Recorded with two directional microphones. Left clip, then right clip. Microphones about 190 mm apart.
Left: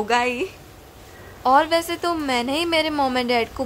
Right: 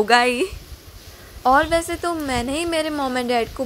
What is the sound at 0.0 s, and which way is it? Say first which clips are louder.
A woman's voice: right 4 dB; 20° right (ahead or behind).